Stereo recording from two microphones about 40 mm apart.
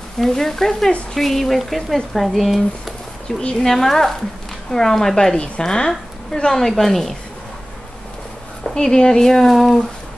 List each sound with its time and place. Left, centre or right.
0.2 s a woman's voice: centre
3.3 s speech: centre
3.5 s a woman's voice: centre
8.6 s a woman's voice: centre